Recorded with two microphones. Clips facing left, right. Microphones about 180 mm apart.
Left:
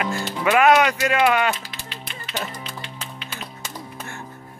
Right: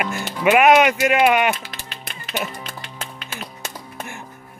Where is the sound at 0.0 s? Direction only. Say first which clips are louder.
Right 3 dB; 20° right (ahead or behind).